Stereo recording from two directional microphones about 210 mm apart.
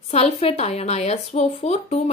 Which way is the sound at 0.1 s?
30° left (ahead or behind).